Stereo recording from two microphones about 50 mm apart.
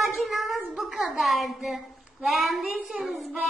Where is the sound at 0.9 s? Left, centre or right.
Centre.